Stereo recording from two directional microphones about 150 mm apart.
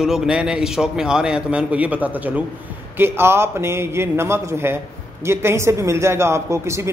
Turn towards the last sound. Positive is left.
turn(degrees=-20)  # may be behind; listen again after turning